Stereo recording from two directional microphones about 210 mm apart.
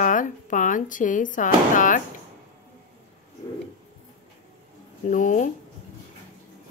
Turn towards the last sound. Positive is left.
turn(degrees=40)  # may be behind; listen again after turning